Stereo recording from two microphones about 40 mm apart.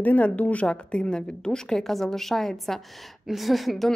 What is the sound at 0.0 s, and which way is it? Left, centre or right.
A woman's voice, left.